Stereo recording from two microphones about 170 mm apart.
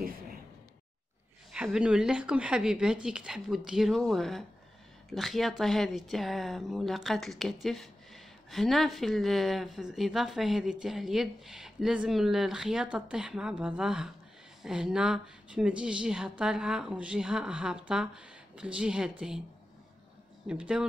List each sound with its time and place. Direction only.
1.5 s speech: 5° right (ahead or behind)
20.4 s speech: 5° right (ahead or behind)